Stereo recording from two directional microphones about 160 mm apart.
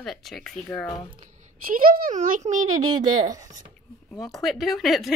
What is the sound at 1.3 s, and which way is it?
Speech, 55° right (ahead or behind).